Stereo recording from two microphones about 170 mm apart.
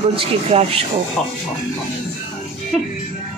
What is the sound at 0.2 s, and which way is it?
Speech, 35° right (ahead or behind).